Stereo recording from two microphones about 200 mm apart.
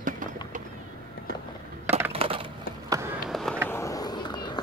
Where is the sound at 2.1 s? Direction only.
30° right (ahead or behind).